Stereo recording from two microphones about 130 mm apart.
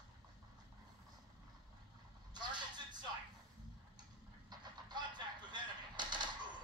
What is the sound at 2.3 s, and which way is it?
Vehicle, 35° right (ahead or behind).